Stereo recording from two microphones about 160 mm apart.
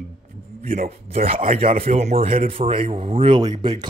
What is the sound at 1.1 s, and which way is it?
Speech, 35° right (ahead or behind).